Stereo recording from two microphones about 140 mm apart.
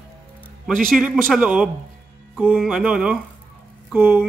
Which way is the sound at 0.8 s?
Centre (ahead or behind).